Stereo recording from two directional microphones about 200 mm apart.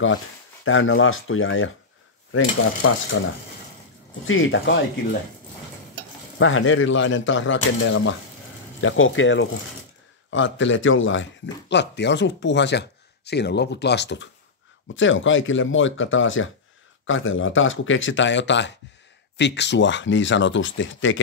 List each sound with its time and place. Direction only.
0.7 s speech: 85° left
3.1 s speech: 90° left
4.3 s speech: 75° left (ahead or behind)
6.3 s speech: 85° left; by 8.2 s 65° left (ahead or behind)
8.8 s a man's voice: 80° left; by 14.3 s 60° left (ahead or behind)
15.0 s speech: 70° left (ahead or behind)